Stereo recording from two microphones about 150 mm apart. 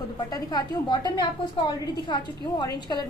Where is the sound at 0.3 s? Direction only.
25° left (ahead or behind).